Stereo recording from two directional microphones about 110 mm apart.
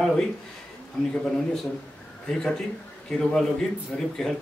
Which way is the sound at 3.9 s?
10° left (ahead or behind).